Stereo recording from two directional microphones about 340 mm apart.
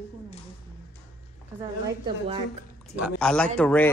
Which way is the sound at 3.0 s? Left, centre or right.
Centre.